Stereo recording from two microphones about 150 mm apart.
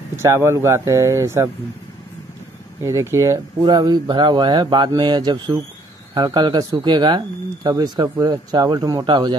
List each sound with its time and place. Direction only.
0.1 s speech: 15° right (ahead or behind)
2.8 s speech: 20° right (ahead or behind)